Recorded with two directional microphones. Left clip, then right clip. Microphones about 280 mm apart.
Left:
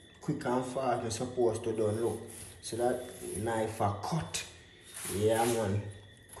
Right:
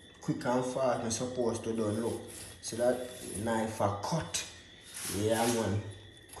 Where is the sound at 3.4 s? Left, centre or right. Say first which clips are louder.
Right 1 dB; centre.